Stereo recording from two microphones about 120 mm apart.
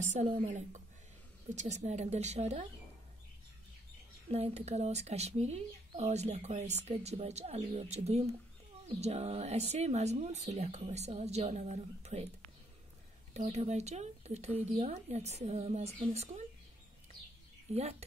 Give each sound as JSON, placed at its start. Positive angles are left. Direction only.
{"t": 0.0, "sound": "a sound", "side_deg": -80}
{"t": 0.5, "sound": "speech", "side_deg": -90}
{"t": 1.5, "sound": "speech", "side_deg": -80}
{"t": 4.3, "sound": "speech", "side_deg": -65}
{"t": 13.3, "sound": "speech", "side_deg": -65}
{"t": 17.7, "sound": "speech", "side_deg": -65}